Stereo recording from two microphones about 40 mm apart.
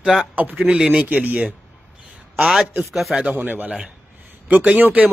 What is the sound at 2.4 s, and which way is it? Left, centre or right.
Speech, centre.